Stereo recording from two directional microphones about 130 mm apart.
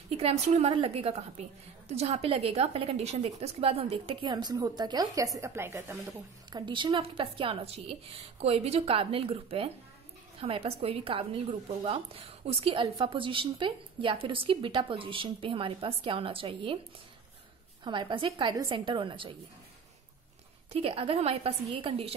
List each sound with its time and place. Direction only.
0.2 s a woman's voice: 55° right (ahead or behind); by 5.9 s 20° right (ahead or behind)
6.5 s a woman's voice: 40° right (ahead or behind)
17.8 s speech: 35° right (ahead or behind)
20.7 s a woman's voice: 45° right (ahead or behind)